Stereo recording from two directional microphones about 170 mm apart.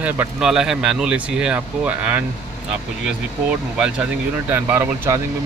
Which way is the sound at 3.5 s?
5° right (ahead or behind).